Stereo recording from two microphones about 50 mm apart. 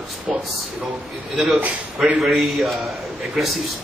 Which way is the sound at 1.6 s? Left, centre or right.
Right.